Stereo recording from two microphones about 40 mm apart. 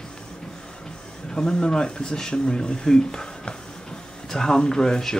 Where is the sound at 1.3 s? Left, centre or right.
Centre.